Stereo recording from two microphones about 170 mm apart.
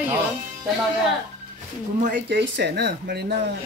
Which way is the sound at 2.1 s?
90° right.